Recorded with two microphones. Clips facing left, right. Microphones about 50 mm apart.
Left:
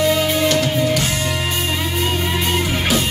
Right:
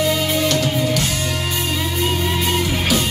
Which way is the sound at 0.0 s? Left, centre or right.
Centre.